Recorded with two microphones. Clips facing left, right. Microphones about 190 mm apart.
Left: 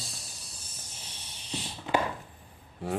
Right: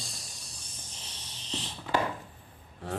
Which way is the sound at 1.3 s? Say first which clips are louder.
Left 1 dB; 10° left (ahead or behind).